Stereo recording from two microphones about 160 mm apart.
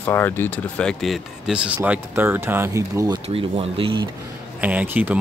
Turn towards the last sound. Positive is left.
turn(degrees=-10)  # may be behind; listen again after turning